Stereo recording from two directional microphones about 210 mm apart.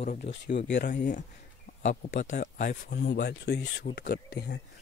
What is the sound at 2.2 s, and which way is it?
Speech, 35° left (ahead or behind).